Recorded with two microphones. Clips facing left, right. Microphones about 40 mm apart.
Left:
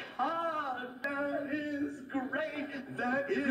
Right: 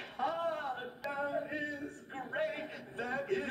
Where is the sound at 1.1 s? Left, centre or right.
Left.